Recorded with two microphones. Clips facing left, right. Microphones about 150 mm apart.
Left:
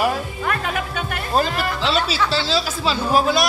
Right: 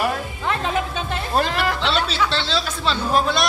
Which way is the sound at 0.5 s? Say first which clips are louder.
Right 2 dB; 25° right (ahead or behind).